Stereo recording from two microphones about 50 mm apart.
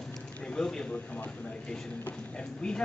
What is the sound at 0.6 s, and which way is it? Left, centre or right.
Speech, centre.